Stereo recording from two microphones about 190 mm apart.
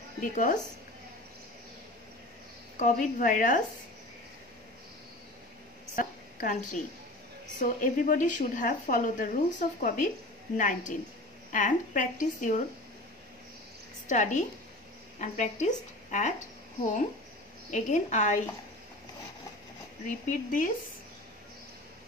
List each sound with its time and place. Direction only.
0.2 s a woman's voice: 45° left (ahead or behind)
2.8 s a woman's voice: 45° left (ahead or behind)
5.9 s a sound: 45° left (ahead or behind)
7.5 s a woman's voice: 45° left (ahead or behind)
14.0 s a woman's voice: 40° left (ahead or behind)
20.2 s a woman's voice: 45° left (ahead or behind)